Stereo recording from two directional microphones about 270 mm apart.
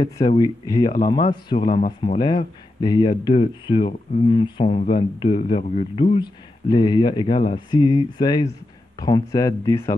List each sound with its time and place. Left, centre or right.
0.0 s speech: centre